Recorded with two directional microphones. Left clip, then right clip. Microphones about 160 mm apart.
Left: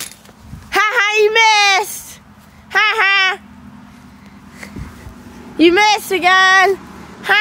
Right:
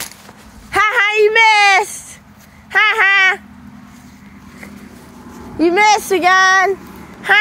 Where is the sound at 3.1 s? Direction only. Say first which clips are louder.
Right 2 dB; 25° left (ahead or behind).